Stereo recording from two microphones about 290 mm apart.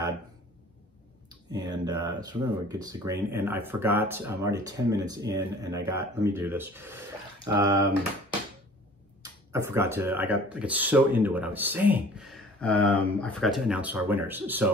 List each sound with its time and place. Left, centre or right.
1.5 s speech: centre
1.9 s speech: right
2.1 s speech: centre
9.2 s speech: centre